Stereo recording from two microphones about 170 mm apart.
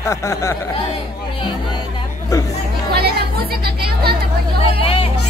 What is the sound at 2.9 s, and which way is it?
Music, 70° right (ahead or behind).